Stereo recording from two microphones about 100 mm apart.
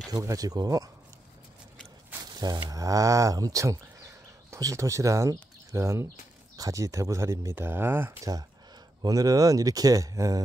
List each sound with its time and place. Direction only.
0.1 s speech: 35° right (ahead or behind)
2.3 s a sound: 45° right (ahead or behind)
2.7 s speech: 35° right (ahead or behind)
8.2 s speech: 40° right (ahead or behind)